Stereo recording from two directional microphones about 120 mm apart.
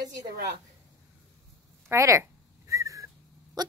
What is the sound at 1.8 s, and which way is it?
Speech, 25° right (ahead or behind).